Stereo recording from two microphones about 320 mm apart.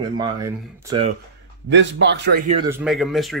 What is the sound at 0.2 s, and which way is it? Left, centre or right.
Speech, centre.